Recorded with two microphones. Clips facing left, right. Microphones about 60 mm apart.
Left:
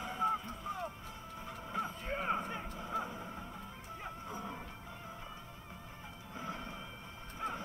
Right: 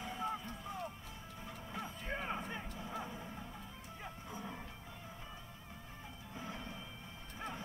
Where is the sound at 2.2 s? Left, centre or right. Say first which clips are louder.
Left 8 dB; left.